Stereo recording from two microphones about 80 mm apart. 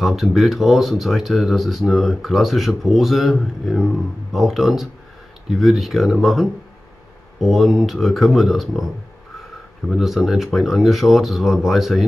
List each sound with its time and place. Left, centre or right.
0.0 s speech: centre